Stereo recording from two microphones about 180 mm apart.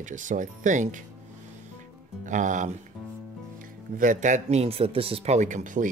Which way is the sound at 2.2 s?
45° right (ahead or behind).